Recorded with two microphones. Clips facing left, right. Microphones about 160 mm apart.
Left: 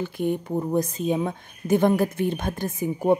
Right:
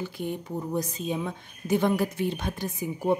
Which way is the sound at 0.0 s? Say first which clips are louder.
Left 7 dB; 50° left (ahead or behind).